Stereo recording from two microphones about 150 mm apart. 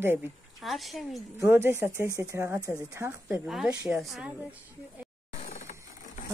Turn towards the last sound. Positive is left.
turn(degrees=50)  # may be behind; listen again after turning